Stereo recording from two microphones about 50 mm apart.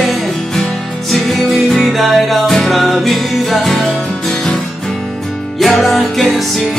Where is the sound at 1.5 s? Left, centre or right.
Centre.